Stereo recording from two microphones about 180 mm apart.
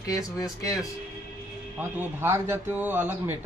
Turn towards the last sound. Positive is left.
turn(degrees=-10)  # may be behind; listen again after turning